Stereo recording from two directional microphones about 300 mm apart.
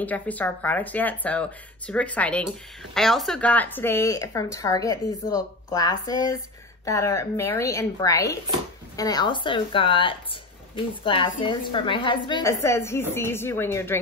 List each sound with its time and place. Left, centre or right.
0.0 s a woman's voice: centre